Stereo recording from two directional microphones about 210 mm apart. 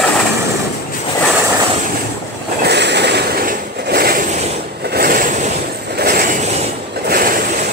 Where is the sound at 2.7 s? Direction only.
55° right (ahead or behind).